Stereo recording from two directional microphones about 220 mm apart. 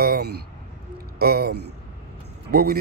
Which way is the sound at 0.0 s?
45° right (ahead or behind).